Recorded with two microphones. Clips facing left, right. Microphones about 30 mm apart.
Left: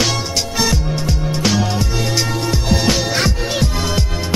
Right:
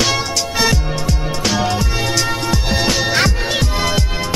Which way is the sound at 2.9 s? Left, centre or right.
Centre.